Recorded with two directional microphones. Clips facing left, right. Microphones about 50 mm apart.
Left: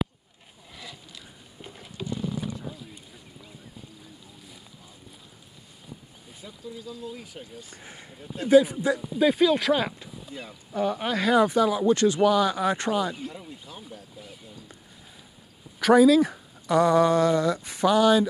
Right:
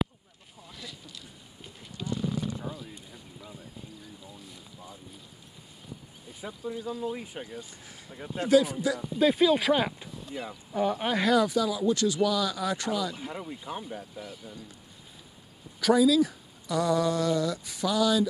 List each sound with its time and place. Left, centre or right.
0.7 s a sound: left
6.4 s speech: right
7.7 s speech: left
8.5 s speech: left
9.2 s speech: centre
10.3 s speech: centre
10.7 s speech: centre
11.3 s speech: left
13.2 s speech: right
15.8 s speech: left